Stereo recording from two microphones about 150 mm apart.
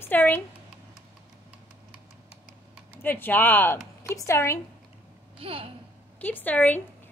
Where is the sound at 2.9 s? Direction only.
15° left (ahead or behind).